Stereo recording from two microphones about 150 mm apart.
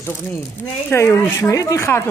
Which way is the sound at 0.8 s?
15° left (ahead or behind).